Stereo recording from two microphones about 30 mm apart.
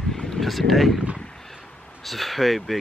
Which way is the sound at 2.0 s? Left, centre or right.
Centre.